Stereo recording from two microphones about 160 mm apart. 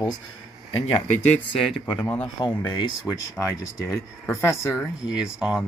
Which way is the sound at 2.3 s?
25° left (ahead or behind).